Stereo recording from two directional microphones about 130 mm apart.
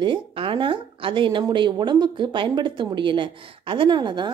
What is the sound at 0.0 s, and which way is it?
A woman's voice, 40° right (ahead or behind).